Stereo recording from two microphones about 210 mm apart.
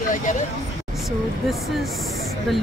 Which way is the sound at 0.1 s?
35° left (ahead or behind).